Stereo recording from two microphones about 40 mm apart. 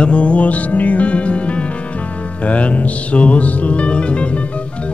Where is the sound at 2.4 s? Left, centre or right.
Left.